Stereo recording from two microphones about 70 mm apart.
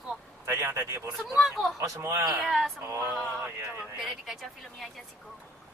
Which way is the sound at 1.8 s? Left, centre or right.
Right.